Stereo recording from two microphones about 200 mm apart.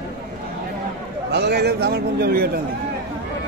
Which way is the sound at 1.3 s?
55° right (ahead or behind).